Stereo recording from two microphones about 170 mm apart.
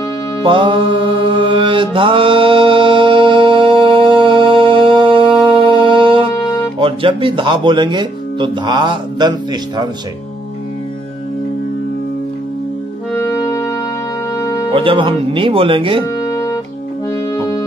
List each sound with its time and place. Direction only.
0.4 s mantra: 30° right (ahead or behind)
6.3 s music: 20° left (ahead or behind)
6.8 s speech: 30° right (ahead or behind)
13.1 s music: 20° left (ahead or behind)
14.7 s speech: 30° right (ahead or behind)
16.2 s music: 20° left (ahead or behind)